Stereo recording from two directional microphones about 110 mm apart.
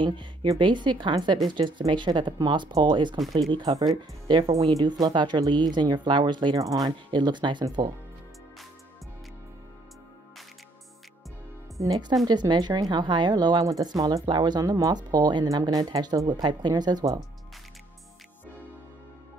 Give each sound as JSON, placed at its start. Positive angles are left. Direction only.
{"t": 0.0, "sound": "a woman's voice", "side_deg": -50}
{"t": 11.8, "sound": "speech", "side_deg": -35}